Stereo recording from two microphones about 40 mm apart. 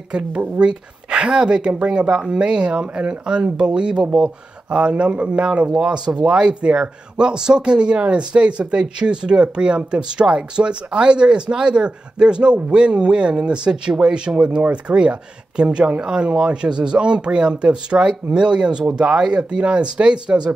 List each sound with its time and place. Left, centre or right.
0.1 s speech: right
4.0 s speech: centre
4.6 s speech: right